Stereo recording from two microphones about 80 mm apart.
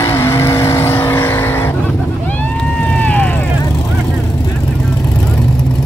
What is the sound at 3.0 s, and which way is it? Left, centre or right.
Vehicle, centre.